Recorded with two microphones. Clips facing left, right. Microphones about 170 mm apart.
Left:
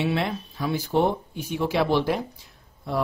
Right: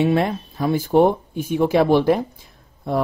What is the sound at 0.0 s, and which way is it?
Speech, 45° right (ahead or behind).